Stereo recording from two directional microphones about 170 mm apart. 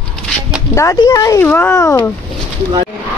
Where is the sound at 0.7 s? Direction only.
20° left (ahead or behind).